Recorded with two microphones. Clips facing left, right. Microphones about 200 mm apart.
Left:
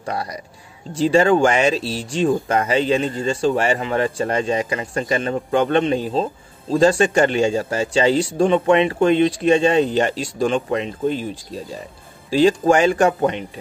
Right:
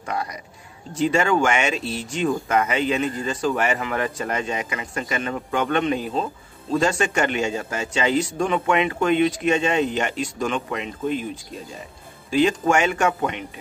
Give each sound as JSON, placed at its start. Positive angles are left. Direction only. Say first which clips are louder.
{"t": 0.0, "sound": "speech", "louder": "left 2 dB", "side_deg": 35}